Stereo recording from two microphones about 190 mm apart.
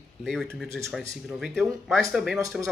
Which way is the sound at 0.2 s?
5° left (ahead or behind).